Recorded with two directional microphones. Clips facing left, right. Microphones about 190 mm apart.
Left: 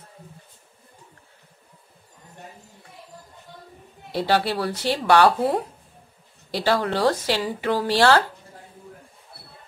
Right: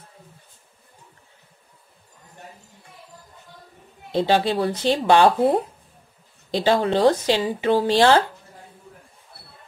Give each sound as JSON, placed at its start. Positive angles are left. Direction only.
{"t": 4.1, "sound": "speech", "side_deg": -20}